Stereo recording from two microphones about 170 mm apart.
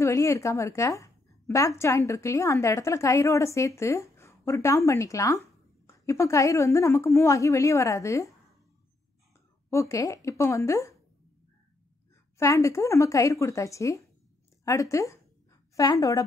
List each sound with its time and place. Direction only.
0.0 s a woman's voice: 15° left (ahead or behind)
9.7 s a woman's voice: 15° left (ahead or behind)
12.4 s a woman's voice: 15° left (ahead or behind)